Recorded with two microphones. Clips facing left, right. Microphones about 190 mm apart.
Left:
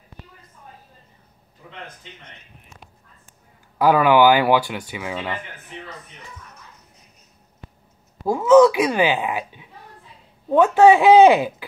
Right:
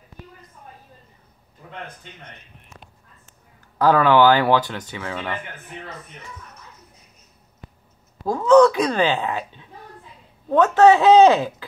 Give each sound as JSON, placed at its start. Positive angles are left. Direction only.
{"t": 2.0, "sound": "speech", "side_deg": -50}
{"t": 3.7, "sound": "speech", "side_deg": 10}
{"t": 8.3, "sound": "speech", "side_deg": 10}